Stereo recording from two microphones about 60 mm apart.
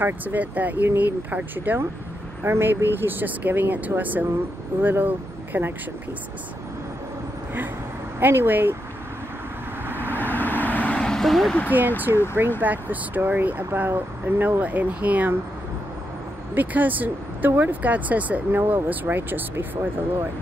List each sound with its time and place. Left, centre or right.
0.0 s speech: right
8.2 s speech: right
10.2 s vehicle: left
11.0 s a sound: centre
11.7 s speech: right
16.5 s speech: right